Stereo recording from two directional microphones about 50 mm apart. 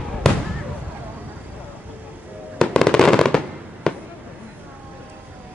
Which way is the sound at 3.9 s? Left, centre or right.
Centre.